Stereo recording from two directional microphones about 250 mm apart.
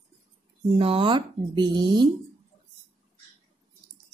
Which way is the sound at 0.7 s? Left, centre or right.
Right.